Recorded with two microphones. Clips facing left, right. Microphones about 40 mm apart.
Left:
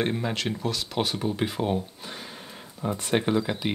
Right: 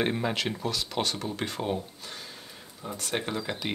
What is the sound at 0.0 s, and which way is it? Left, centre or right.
Speech, centre.